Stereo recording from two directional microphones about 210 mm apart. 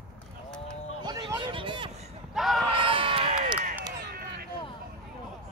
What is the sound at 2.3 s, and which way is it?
Speech, centre (ahead or behind).